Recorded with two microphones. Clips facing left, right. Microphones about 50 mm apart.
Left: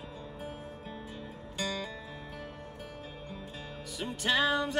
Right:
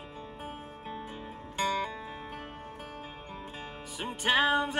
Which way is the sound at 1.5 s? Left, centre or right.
Right.